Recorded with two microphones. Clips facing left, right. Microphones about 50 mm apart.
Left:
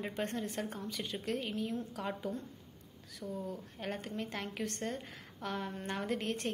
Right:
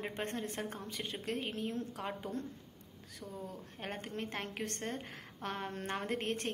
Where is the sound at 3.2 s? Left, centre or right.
Centre.